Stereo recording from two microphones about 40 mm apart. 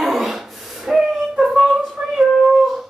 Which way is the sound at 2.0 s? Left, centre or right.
Right.